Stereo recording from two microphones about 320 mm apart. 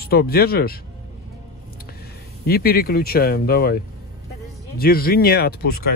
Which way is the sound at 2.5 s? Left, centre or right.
Left.